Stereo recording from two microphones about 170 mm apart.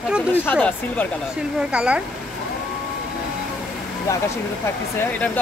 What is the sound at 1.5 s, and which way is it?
Speech, 5° right (ahead or behind).